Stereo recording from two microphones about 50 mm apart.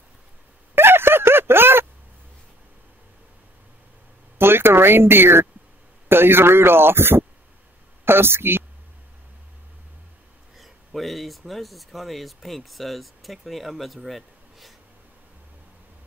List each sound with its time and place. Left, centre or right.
0.7 s a sound: right
4.4 s a man's voice: right
10.6 s speech: centre